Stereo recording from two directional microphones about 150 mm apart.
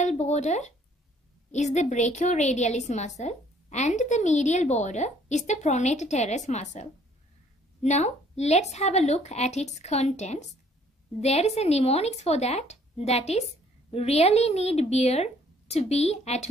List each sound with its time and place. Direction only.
0.0 s a woman's voice: 50° left (ahead or behind)